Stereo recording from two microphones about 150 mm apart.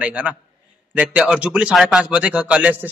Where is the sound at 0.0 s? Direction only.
10° right (ahead or behind).